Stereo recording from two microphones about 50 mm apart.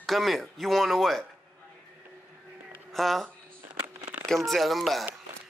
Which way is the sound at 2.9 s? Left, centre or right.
Centre.